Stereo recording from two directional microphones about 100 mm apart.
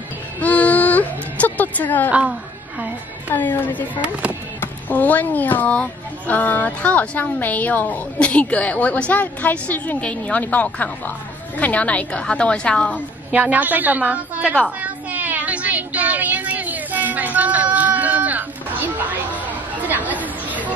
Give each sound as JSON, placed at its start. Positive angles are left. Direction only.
{"t": 0.4, "sound": "music", "side_deg": 15}
{"t": 2.0, "sound": "a woman's voice", "side_deg": -15}
{"t": 3.3, "sound": "a woman's voice", "side_deg": 20}
{"t": 13.3, "sound": "a woman's voice", "side_deg": -15}
{"t": 14.8, "sound": "child singing", "side_deg": -15}